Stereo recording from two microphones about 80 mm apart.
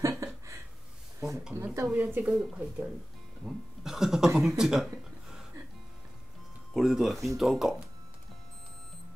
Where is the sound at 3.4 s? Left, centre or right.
Centre.